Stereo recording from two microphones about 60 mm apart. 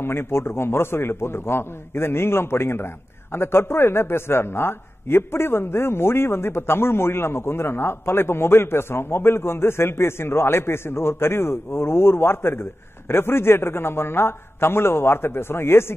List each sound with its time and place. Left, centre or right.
0.0 s a man's voice: left